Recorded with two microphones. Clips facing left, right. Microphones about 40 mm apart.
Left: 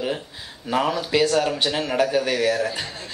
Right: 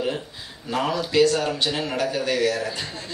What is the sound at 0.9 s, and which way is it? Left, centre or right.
Speech, centre.